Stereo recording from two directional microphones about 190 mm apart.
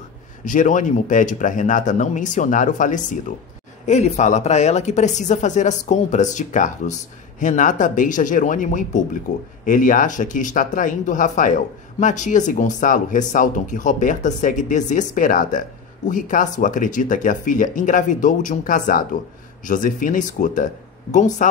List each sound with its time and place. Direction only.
0.5 s a woman's voice: 45° left (ahead or behind)